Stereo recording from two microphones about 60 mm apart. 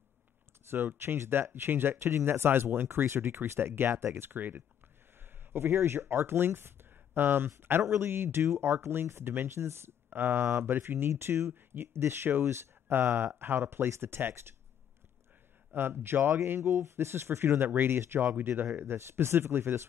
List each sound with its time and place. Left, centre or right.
0.7 s speech: right
5.2 s speech: right
10.0 s speech: right
15.7 s speech: right